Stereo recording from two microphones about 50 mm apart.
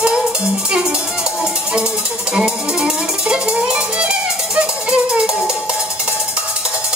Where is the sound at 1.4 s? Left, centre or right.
Centre.